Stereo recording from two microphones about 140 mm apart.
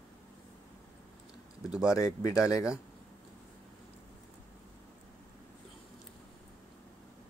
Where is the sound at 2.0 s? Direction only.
25° left (ahead or behind).